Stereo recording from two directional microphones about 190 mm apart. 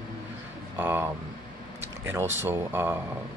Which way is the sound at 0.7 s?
10° right (ahead or behind).